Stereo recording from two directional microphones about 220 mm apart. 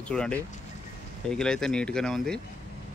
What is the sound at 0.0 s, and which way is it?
A man's voice, 5° left (ahead or behind).